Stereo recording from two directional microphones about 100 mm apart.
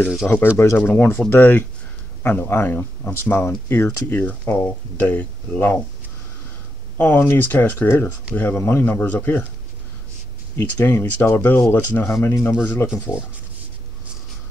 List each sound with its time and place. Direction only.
0.2 s speech: 10° left (ahead or behind)
7.0 s speech: 20° left (ahead or behind)
10.6 s speech: 20° left (ahead or behind)
12.1 s speech: 30° left (ahead or behind)